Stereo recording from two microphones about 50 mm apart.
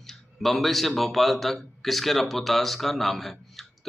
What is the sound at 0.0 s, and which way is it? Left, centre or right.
A man's voice, centre.